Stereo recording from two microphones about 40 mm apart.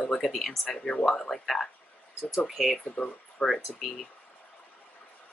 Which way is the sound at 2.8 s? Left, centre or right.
Left.